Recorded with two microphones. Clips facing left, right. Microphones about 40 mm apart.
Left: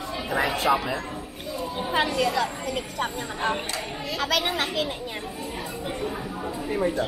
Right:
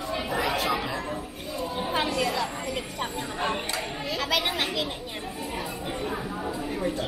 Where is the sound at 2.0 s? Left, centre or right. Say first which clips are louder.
Left 3 dB; centre.